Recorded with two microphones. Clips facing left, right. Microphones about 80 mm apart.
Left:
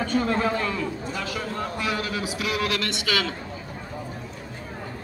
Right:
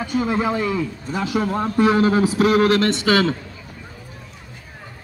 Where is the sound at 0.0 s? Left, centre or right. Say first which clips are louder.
Right 2 dB; centre; by 3.3 s right.